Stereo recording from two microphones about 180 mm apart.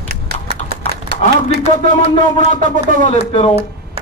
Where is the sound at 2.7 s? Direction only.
45° right (ahead or behind).